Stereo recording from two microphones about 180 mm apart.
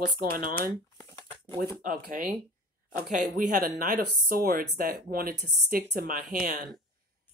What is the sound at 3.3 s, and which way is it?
Speech, 50° right (ahead or behind).